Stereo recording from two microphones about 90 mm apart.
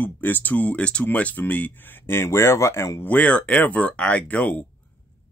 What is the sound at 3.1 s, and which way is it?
Speech, 15° left (ahead or behind).